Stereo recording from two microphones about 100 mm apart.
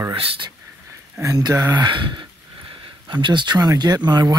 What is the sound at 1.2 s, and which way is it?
Speech, 35° right (ahead or behind).